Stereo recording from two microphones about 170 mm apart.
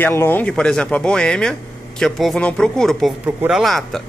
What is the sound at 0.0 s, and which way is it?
Speech, 15° left (ahead or behind).